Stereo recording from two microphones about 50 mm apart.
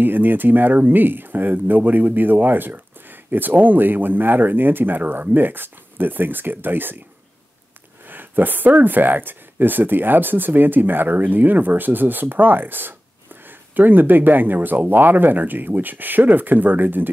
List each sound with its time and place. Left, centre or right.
0.0 s speech: right
8.0 s speech: right